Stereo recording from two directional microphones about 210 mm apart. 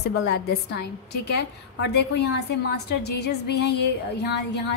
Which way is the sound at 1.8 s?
50° left (ahead or behind).